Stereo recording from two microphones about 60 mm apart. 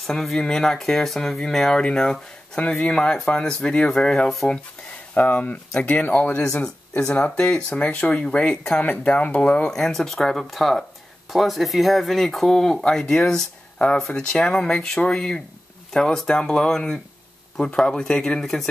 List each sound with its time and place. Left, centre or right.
0.0 s speech: centre
5.1 s speech: left
9.7 s speech: centre